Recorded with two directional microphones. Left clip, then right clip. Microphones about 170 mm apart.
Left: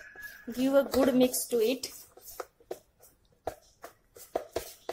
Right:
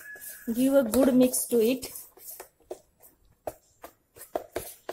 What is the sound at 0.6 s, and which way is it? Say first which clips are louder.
Speech: right 3 dB; 45° right (ahead or behind).